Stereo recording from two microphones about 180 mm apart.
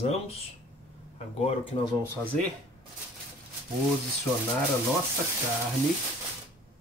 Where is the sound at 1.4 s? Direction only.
35° left (ahead or behind).